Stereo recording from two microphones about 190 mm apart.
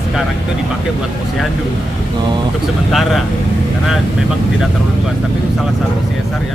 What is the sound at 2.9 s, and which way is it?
Speech, centre (ahead or behind).